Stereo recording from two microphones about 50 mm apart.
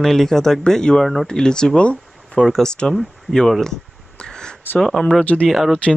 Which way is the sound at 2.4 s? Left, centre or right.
Centre.